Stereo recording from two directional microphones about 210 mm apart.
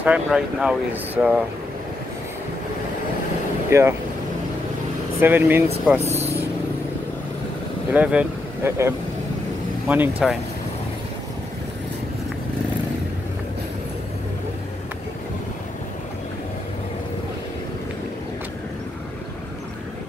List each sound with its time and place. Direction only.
0.0 s speech: 5° right (ahead or behind)
3.7 s speech: 15° right (ahead or behind)
5.2 s speech: 10° right (ahead or behind)
6.0 s vehicle: 30° right (ahead or behind)
7.9 s speech: 5° right (ahead or behind)